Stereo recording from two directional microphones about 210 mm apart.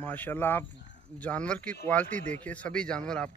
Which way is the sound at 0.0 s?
10° left (ahead or behind).